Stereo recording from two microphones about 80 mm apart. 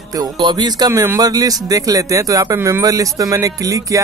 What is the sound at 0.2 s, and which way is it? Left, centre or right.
Speech, right.